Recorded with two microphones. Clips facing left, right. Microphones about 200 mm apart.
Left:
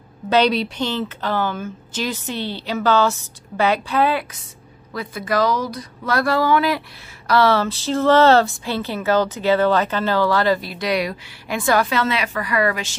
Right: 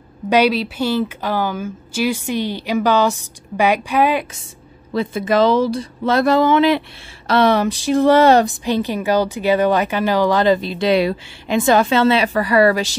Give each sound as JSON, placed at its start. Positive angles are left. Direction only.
{"t": 0.3, "sound": "speech", "side_deg": -5}